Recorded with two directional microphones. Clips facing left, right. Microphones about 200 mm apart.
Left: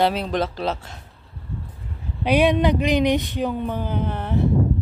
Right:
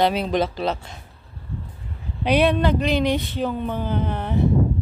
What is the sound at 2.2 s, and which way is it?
Speech, 10° left (ahead or behind).